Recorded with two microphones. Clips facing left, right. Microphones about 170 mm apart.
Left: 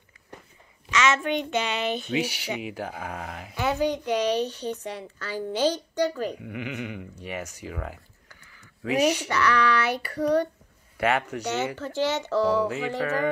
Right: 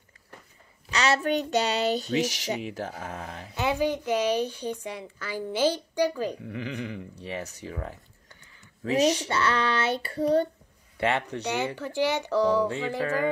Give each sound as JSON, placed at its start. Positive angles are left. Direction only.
{"t": 0.8, "sound": "speech", "side_deg": -35}
{"t": 3.5, "sound": "a woman's voice", "side_deg": -15}
{"t": 6.4, "sound": "speech", "side_deg": -35}
{"t": 11.7, "sound": "a woman's voice", "side_deg": -15}
{"t": 12.6, "sound": "speech", "side_deg": -30}